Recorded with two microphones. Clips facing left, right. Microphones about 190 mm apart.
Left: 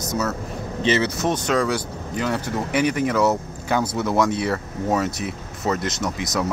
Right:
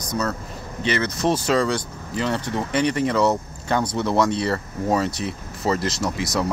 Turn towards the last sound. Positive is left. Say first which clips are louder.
# right 1 dB
turn(degrees=0)  # may be behind; listen again after turning